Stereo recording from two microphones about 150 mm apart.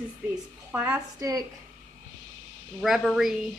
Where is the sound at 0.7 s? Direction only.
15° right (ahead or behind).